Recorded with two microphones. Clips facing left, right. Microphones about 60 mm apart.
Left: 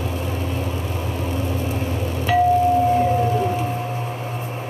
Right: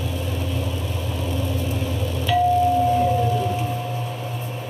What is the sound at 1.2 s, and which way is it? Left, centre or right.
Telephone dialing, left.